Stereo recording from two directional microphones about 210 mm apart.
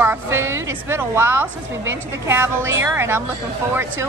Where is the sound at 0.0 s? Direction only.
10° right (ahead or behind).